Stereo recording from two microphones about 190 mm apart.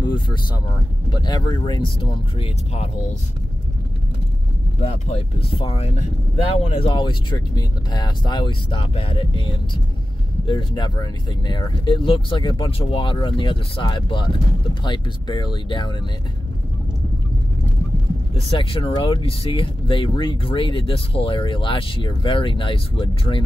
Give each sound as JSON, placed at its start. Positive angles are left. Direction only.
{"t": 0.0, "sound": "speech", "side_deg": 25}
{"t": 5.6, "sound": "speech", "side_deg": 30}
{"t": 18.3, "sound": "speech", "side_deg": 30}